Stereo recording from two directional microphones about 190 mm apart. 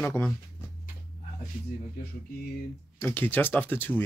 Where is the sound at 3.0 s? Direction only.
10° left (ahead or behind).